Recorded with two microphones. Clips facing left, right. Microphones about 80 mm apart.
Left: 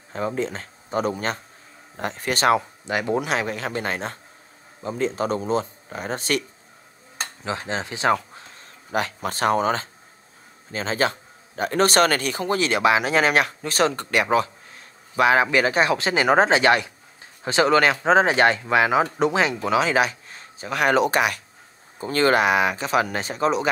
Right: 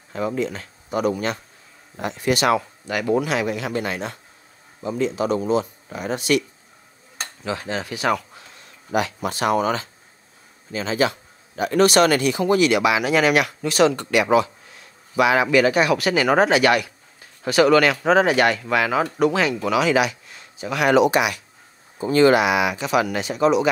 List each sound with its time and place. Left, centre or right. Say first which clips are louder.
0.1 s speech: right 2 dB; left
2.8 s speech: right 2 dB; left